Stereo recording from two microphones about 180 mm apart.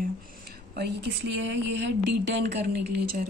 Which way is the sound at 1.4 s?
80° right.